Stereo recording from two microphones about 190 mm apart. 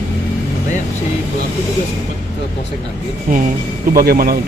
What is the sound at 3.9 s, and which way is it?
Speech, 50° right (ahead or behind).